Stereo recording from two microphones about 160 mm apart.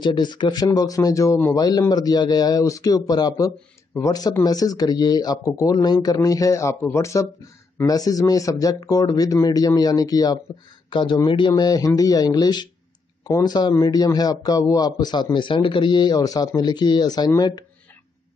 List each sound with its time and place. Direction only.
0.0 s speech: 30° left (ahead or behind)